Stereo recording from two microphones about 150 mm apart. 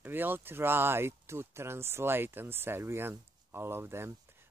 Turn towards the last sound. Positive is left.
turn(degrees=-15)  # may be behind; listen again after turning